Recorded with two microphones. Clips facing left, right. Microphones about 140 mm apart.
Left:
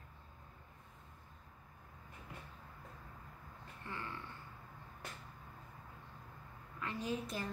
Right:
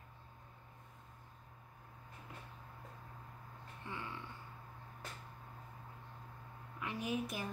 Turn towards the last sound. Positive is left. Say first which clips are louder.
# right 1 dB
turn(degrees=-15)  # may be behind; listen again after turning